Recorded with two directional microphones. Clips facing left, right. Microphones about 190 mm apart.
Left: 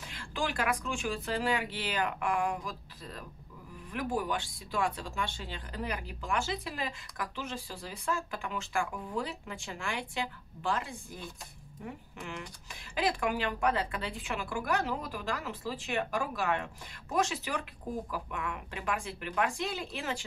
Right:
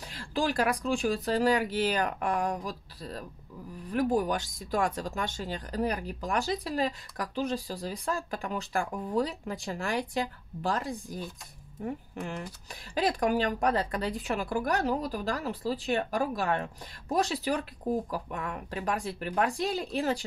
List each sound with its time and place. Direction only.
0.1 s speech: 35° right (ahead or behind)